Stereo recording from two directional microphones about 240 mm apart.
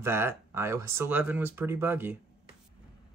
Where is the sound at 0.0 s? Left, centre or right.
Centre.